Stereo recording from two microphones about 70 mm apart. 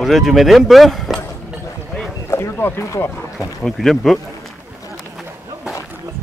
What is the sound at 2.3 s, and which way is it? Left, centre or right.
Speech, left.